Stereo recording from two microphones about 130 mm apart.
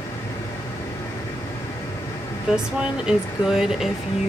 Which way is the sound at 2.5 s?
5° right (ahead or behind).